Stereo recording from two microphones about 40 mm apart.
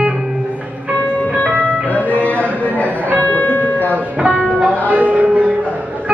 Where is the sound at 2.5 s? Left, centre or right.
Right.